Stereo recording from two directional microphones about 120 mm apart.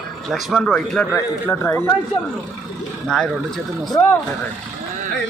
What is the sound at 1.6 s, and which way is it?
Speech, 20° left (ahead or behind).